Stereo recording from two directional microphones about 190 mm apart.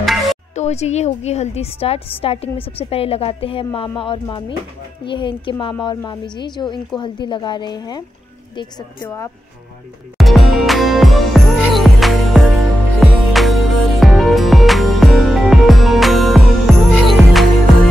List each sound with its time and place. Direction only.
0.0 s music: centre (ahead or behind)
0.6 s a woman's voice: 35° left (ahead or behind)
10.1 s music: centre (ahead or behind)